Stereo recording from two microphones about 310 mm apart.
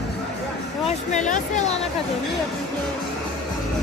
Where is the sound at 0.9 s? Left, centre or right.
Left.